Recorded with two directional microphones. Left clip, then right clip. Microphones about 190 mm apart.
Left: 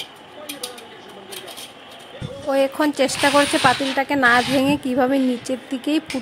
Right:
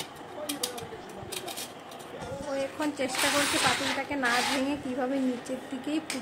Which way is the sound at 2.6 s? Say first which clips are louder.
Left 14 dB; 55° left (ahead or behind).